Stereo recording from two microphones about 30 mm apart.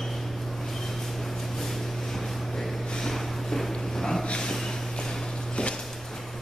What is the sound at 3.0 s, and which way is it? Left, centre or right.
Boat, centre.